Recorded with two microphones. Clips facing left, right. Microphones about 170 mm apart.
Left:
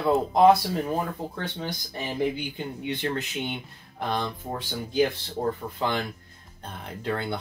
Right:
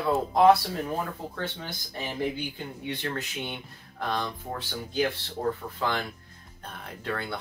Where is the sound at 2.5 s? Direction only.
20° left (ahead or behind).